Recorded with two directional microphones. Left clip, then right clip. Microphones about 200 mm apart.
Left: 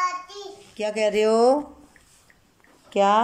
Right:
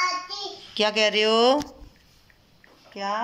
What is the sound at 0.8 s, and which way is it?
Speech, 15° left (ahead or behind).